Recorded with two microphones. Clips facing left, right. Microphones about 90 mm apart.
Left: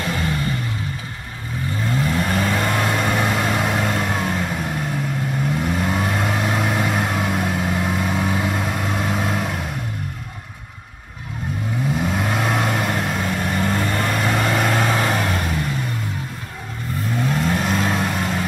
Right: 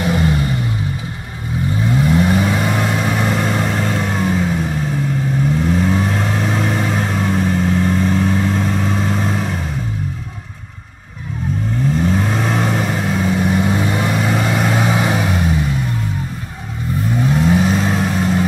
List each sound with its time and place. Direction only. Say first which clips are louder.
0.0 s vehicle: right 6 dB; 20° right (ahead or behind)
1.9 s vehicle: right 6 dB; 10° right (ahead or behind)
11.9 s vehicle: right 4 dB; 5° left (ahead or behind)
17.2 s vehicle: right 6 dB; 5° right (ahead or behind)